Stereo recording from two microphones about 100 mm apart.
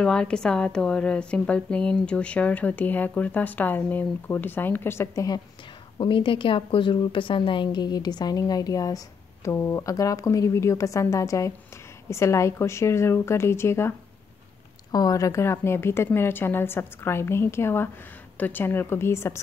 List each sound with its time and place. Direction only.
0.0 s a woman's voice: 10° left (ahead or behind); by 5.4 s 35° left (ahead or behind)
5.9 s a woman's voice: 55° left (ahead or behind); by 13.9 s 25° left (ahead or behind)
14.9 s a woman's voice: 40° left (ahead or behind)